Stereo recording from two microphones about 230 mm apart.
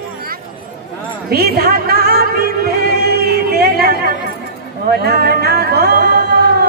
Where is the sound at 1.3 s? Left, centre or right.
Right.